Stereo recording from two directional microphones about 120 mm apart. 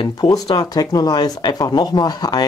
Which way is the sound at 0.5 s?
35° left (ahead or behind).